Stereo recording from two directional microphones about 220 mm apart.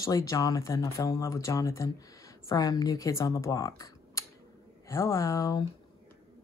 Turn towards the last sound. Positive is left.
turn(degrees=15)  # may be behind; listen again after turning